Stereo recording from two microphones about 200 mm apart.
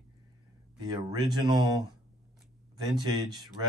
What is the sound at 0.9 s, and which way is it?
Speech, 20° right (ahead or behind).